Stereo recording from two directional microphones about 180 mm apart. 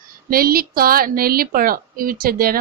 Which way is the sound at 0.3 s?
55° right (ahead or behind).